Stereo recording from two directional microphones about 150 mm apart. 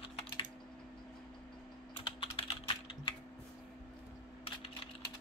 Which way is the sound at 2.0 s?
35° left (ahead or behind).